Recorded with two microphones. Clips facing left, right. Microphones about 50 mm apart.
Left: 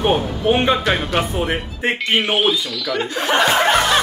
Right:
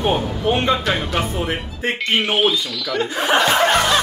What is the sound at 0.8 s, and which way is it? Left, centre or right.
Speech, centre.